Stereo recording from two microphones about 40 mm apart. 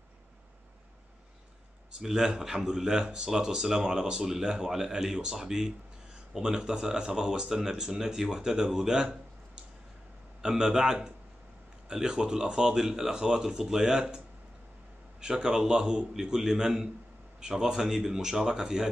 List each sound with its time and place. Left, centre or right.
1.9 s speech: centre
10.4 s speech: centre